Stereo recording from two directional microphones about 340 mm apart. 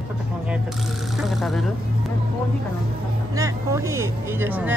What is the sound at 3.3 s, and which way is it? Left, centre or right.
Speech, centre.